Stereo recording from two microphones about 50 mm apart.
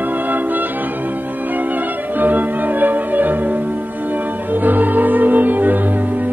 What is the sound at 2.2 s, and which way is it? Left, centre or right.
Music, right.